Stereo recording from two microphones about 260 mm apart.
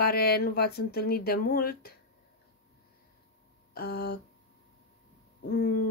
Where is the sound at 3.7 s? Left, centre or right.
Left.